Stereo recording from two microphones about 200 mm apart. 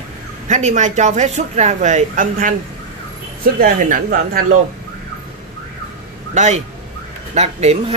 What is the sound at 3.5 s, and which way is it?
Speech, 45° right (ahead or behind).